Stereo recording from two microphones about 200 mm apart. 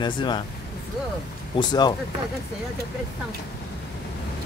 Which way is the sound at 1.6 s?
20° left (ahead or behind).